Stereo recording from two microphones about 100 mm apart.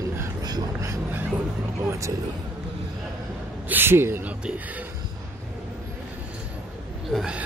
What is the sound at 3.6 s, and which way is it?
Speech, 20° right (ahead or behind).